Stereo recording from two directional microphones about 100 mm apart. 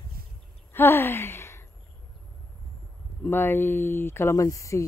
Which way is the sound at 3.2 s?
20° left (ahead or behind).